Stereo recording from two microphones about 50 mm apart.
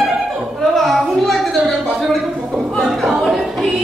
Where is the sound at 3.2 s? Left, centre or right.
Centre.